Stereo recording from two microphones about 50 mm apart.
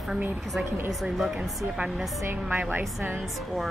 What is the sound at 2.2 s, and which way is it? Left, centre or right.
Speech, right.